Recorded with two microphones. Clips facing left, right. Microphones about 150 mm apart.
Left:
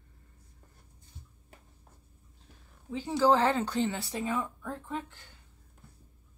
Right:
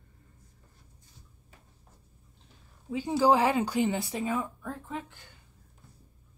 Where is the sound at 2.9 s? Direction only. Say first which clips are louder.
Right 1 dB; 15° right (ahead or behind).